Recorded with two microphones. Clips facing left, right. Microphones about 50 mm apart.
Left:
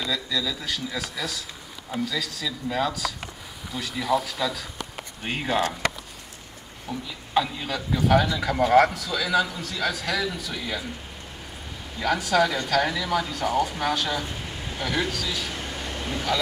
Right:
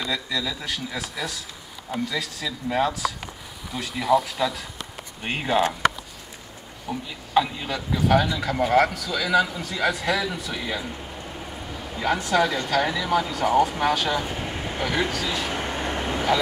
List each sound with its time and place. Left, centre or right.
0.1 s speech: centre
6.9 s speech: centre
12.0 s speech: centre
12.9 s speech: right
14.8 s speech: right
15.5 s vehicle: right